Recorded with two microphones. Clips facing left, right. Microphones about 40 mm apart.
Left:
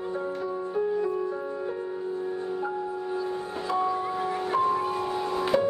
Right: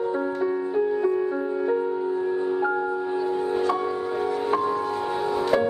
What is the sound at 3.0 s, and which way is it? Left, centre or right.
Music, right.